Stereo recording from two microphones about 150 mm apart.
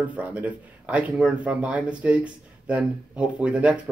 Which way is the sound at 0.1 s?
10° right (ahead or behind).